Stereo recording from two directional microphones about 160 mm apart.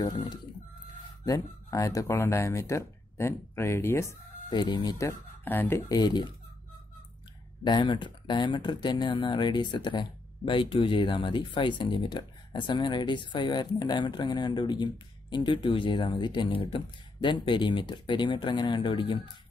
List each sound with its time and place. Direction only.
0.0 s speech: 25° left (ahead or behind)
7.6 s speech: 30° left (ahead or behind)